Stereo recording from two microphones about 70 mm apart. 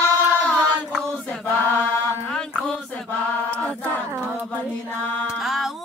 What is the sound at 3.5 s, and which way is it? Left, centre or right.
Child singing, centre.